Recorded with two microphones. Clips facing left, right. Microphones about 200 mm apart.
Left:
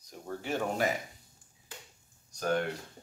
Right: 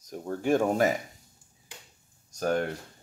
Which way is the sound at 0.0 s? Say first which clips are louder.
Right 9 dB; 45° right (ahead or behind).